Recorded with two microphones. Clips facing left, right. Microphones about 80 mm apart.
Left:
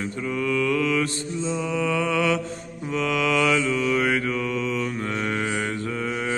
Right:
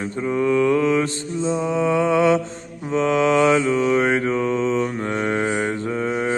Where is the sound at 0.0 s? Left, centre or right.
Right.